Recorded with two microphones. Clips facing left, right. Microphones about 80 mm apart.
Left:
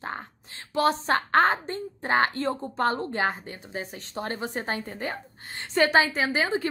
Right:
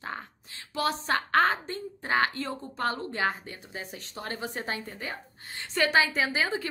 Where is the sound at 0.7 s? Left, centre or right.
Left.